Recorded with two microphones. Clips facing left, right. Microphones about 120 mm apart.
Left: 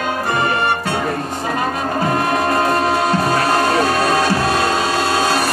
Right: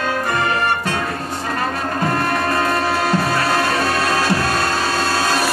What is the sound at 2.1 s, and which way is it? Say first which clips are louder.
Music: left 3 dB; 20° left (ahead or behind).